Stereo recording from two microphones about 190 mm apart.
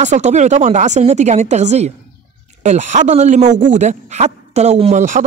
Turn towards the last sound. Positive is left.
turn(degrees=-40)  # may be behind; listen again after turning